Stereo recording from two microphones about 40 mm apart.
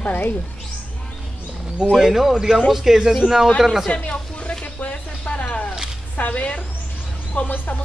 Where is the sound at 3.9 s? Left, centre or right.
Left.